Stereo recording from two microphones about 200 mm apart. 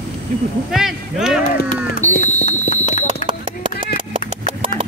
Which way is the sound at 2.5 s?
35° left (ahead or behind).